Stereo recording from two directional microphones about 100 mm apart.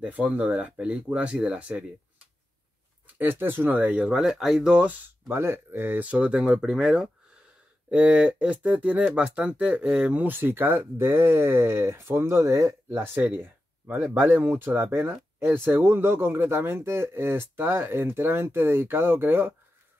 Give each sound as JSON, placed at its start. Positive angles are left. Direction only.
{"t": 0.0, "sound": "speech", "side_deg": -15}
{"t": 3.2, "sound": "speech", "side_deg": -20}
{"t": 5.3, "sound": "speech", "side_deg": -25}